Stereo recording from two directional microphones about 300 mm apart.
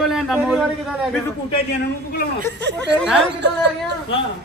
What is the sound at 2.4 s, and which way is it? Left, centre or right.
Speech, right.